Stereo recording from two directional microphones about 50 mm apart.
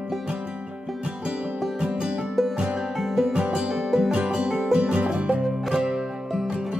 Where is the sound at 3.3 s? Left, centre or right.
Centre.